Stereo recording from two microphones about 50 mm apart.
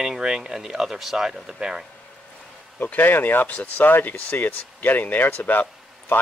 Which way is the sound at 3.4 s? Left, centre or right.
Left.